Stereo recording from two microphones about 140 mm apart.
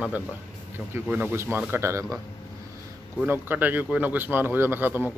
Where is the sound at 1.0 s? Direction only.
10° right (ahead or behind).